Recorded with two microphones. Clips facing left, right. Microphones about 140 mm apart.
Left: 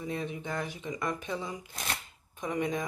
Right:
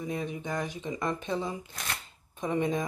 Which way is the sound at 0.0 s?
20° right (ahead or behind).